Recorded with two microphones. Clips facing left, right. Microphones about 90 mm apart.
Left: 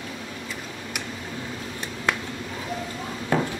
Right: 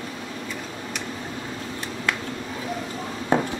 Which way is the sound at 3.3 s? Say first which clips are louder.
Right 2 dB; 25° right (ahead or behind).